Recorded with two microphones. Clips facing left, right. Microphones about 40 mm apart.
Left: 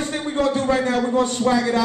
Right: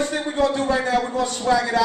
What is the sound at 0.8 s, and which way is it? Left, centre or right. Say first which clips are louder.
A man's voice: left 2 dB; left.